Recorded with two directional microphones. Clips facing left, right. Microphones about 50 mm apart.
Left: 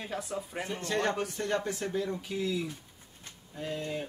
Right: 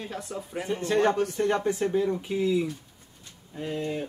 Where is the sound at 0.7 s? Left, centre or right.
Right.